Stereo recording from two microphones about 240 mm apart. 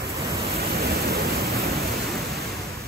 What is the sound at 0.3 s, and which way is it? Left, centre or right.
Pink noise, right.